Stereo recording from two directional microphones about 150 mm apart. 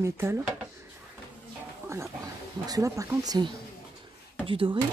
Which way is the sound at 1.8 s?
20° right (ahead or behind).